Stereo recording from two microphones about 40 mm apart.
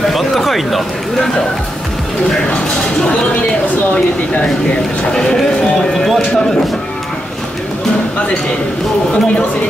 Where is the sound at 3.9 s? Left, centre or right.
Left.